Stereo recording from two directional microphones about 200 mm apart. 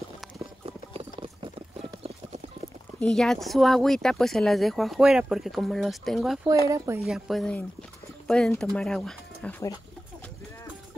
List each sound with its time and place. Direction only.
0.7 s clip-clop: 25° right (ahead or behind)
3.0 s speech: 5° left (ahead or behind)